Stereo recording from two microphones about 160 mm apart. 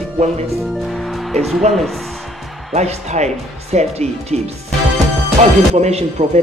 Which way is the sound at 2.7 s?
45° right (ahead or behind).